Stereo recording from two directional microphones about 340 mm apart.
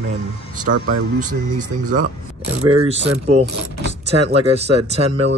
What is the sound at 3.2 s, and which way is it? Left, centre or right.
Speech, right.